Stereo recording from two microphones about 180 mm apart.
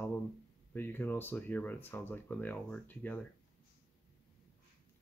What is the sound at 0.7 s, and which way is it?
Speech, 10° left (ahead or behind).